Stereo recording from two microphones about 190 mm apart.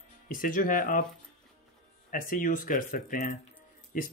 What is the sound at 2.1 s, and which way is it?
Speech, 45° left (ahead or behind).